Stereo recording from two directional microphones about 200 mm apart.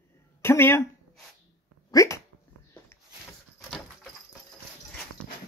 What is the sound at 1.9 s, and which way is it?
Speech, 15° left (ahead or behind).